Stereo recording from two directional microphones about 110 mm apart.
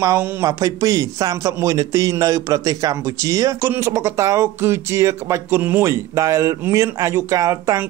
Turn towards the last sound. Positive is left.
turn(degrees=-30)  # may be behind; listen again after turning